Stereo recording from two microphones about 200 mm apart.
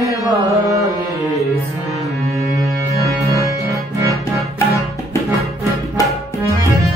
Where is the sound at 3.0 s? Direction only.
15° right (ahead or behind).